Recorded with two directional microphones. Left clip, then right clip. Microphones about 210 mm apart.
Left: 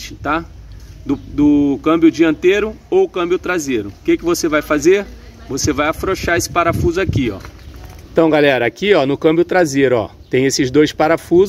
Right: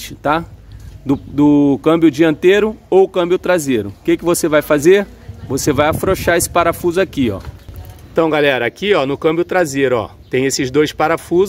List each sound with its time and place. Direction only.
0.0 s speech: 45° right (ahead or behind)
8.1 s speech: 10° left (ahead or behind)